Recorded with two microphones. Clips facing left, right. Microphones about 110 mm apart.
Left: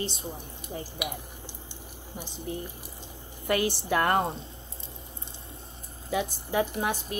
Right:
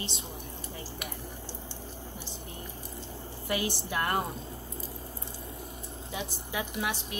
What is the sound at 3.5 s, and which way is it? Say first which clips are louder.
Speech: left 6 dB; 55° left (ahead or behind).